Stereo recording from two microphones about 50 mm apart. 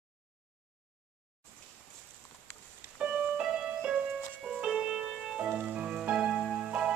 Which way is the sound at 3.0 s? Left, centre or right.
Right.